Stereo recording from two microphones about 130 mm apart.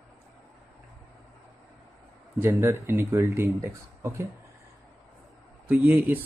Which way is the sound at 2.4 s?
20° right (ahead or behind).